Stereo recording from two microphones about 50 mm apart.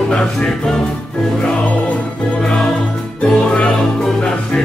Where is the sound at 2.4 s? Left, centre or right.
Centre.